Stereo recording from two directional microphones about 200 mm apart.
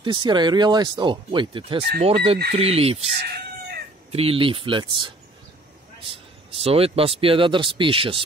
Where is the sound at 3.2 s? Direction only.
50° right (ahead or behind).